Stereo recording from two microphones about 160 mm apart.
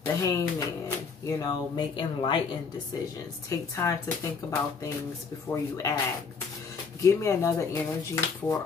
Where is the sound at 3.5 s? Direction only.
20° left (ahead or behind).